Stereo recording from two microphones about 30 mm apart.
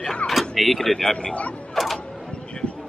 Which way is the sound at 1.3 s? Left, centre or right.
Left.